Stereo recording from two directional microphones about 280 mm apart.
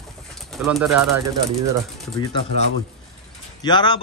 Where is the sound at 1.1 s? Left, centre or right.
Centre.